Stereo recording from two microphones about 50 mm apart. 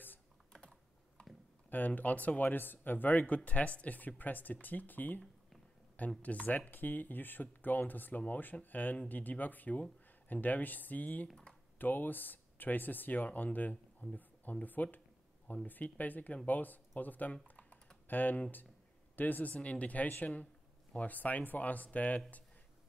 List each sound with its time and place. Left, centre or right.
0.5 s computer keyboard: centre
1.7 s speech: left